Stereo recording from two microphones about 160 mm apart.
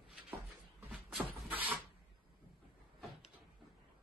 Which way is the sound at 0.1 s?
10° right (ahead or behind).